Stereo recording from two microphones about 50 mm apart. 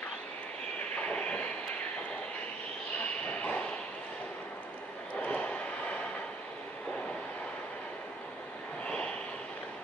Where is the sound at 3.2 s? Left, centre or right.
Left.